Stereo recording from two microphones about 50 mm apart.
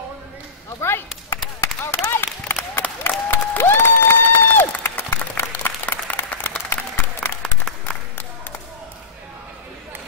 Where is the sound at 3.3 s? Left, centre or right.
Left.